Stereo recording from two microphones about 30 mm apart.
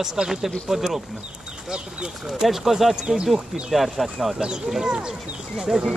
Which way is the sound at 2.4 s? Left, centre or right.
Centre.